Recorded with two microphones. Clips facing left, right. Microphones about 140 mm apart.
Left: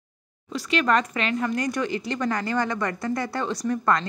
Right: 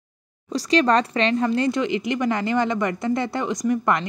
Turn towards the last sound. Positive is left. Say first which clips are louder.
# right 2 dB
turn(degrees=-15)  # may be behind; listen again after turning